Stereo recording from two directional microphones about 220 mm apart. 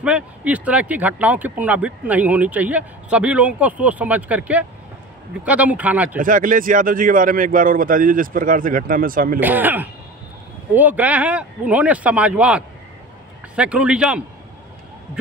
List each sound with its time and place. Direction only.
0.0 s speech: 5° right (ahead or behind)
6.1 s speech: 40° right (ahead or behind)
9.4 s speech: 10° right (ahead or behind)